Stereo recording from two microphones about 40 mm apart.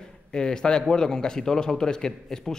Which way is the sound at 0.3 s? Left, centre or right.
Centre.